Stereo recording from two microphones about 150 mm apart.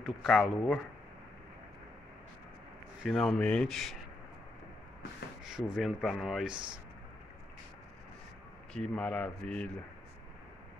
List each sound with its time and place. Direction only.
0.0 s speech: centre (ahead or behind)
3.0 s speech: centre (ahead or behind)
5.4 s speech: 5° right (ahead or behind)
6.5 s speech: 30° right (ahead or behind)
8.7 s speech: 5° left (ahead or behind)